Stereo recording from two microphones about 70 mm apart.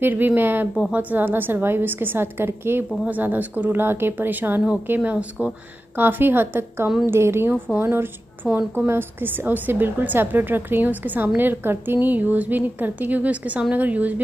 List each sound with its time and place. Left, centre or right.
0.0 s a woman's voice: right